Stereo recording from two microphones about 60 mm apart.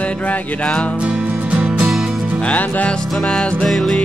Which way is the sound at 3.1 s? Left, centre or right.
Centre.